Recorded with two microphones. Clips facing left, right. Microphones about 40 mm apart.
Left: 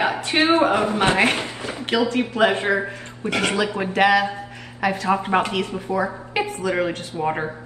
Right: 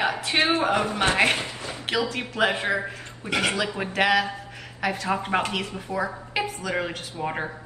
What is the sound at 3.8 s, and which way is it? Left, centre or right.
Speech, centre.